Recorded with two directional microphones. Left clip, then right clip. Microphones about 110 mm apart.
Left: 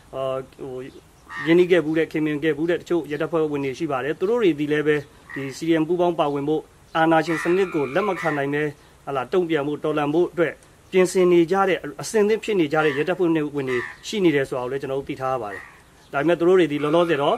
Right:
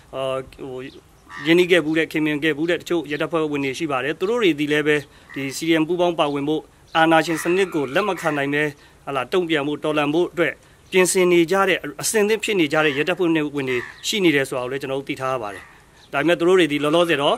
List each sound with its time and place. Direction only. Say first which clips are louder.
0.1 s speech: right 1 dB; 20° right (ahead or behind)